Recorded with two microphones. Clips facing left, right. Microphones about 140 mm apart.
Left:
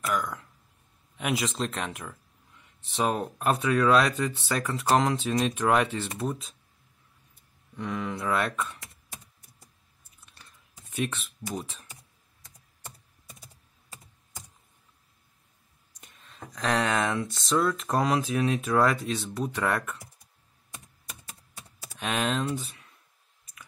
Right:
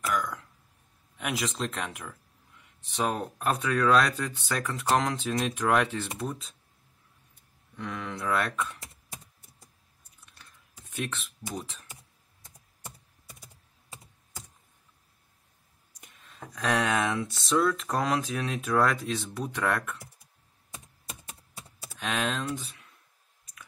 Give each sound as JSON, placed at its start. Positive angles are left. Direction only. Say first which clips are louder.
{"t": 0.0, "sound": "speech", "louder": "left 1 dB", "side_deg": 10}
{"t": 7.7, "sound": "speech", "louder": "left 4 dB", "side_deg": 10}
{"t": 10.8, "sound": "a sound", "louder": "left 4 dB", "side_deg": 0}
{"t": 11.5, "sound": "speech", "louder": "left 2 dB", "side_deg": 5}
{"t": 16.0, "sound": "speech", "louder": "even", "side_deg": -5}
{"t": 21.1, "sound": "typing", "louder": "right 2 dB", "side_deg": -25}
{"t": 21.9, "sound": "speech", "louder": "left 2 dB", "side_deg": 5}